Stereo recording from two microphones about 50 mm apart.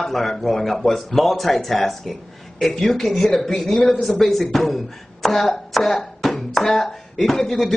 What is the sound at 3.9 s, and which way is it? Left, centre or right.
Speech, centre.